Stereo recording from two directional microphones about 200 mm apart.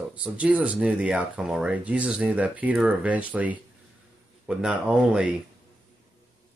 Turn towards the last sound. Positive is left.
turn(degrees=-5)  # may be behind; listen again after turning